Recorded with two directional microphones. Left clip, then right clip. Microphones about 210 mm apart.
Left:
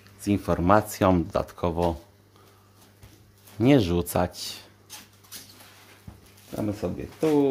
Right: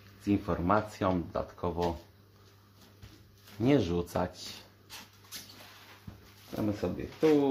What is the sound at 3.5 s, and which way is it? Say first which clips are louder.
Speech: left 7 dB; 35° left (ahead or behind).